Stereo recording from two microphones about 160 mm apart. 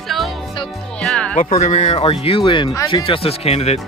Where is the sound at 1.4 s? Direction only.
40° left (ahead or behind).